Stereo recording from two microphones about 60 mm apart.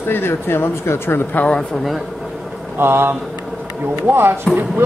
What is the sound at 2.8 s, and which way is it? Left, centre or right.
Speech, right.